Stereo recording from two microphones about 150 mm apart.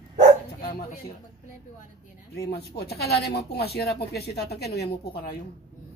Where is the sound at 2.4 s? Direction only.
90° left.